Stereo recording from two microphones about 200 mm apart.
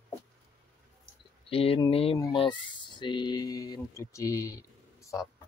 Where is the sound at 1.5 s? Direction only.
30° left (ahead or behind).